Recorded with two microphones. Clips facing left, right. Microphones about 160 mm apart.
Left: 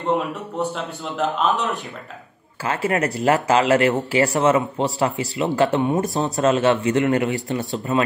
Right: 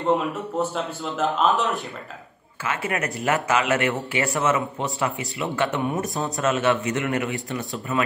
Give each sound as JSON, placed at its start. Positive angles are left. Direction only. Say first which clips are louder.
{"t": 0.0, "sound": "a man's voice", "louder": "even", "side_deg": 0}
{"t": 2.6, "sound": "speech", "louder": "left 5 dB", "side_deg": 30}